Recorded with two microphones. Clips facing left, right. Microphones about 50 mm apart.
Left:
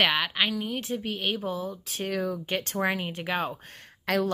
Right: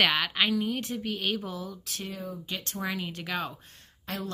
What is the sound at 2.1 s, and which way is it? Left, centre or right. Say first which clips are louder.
Speech: left 9 dB; left.